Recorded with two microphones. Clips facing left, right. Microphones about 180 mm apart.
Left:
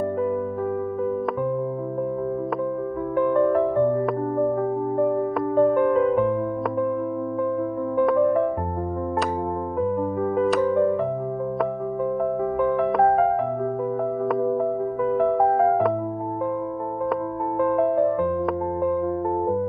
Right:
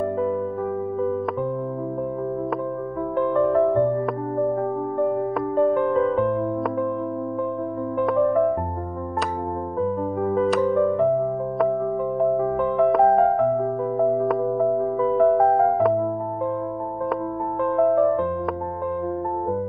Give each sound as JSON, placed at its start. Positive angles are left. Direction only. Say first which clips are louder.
{"t": 5.6, "sound": "music", "louder": "left 1 dB", "side_deg": 0}
{"t": 8.0, "sound": "music", "louder": "left 1 dB", "side_deg": 0}
{"t": 14.2, "sound": "music", "louder": "even", "side_deg": 0}